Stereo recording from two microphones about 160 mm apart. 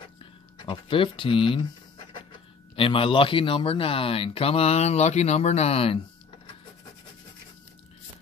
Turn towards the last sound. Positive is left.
turn(degrees=35)  # may be behind; listen again after turning